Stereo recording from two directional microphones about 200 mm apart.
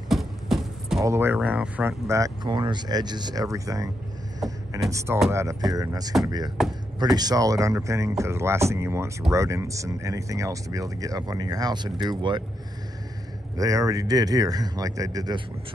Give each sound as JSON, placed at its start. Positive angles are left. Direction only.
{"t": 0.1, "sound": "beatboxing", "side_deg": 0}
{"t": 1.0, "sound": "speech", "side_deg": -10}
{"t": 13.6, "sound": "speech", "side_deg": -15}